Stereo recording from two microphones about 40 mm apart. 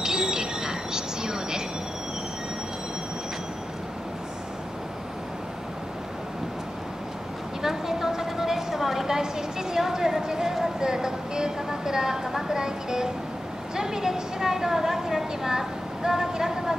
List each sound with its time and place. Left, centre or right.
0.0 s train: centre
7.6 s a sound: centre
13.7 s vehicle: centre